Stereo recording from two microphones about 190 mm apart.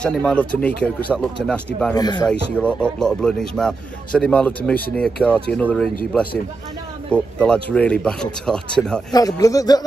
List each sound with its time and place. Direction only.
0.0 s speech: 5° left (ahead or behind)
2.0 s speech: 20° left (ahead or behind)
2.2 s speech: 5° left (ahead or behind)
7.1 s speech: 5° left (ahead or behind)
9.1 s speech: 20° left (ahead or behind)